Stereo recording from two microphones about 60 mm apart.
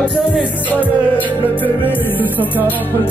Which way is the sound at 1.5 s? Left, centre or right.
Left.